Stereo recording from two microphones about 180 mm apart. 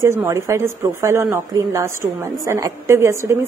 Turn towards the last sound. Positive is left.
turn(degrees=-15)  # may be behind; listen again after turning